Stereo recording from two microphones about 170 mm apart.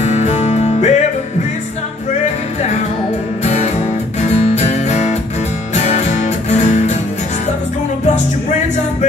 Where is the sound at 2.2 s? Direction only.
40° left (ahead or behind).